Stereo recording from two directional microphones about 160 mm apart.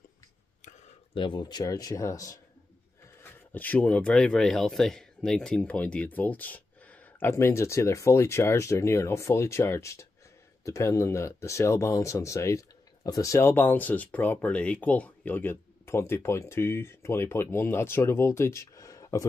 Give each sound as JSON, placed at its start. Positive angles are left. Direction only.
{"t": 1.1, "sound": "speech", "side_deg": 30}
{"t": 3.5, "sound": "speech", "side_deg": 10}